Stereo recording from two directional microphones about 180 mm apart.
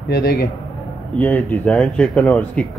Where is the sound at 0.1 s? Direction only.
60° left (ahead or behind).